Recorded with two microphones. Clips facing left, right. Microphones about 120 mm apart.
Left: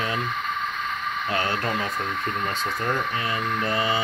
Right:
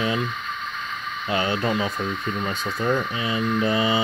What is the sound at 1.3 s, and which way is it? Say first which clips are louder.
Speech: right 4 dB; 15° right (ahead or behind).